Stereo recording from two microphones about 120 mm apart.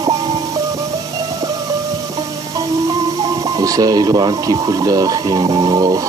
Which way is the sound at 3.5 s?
30° right (ahead or behind).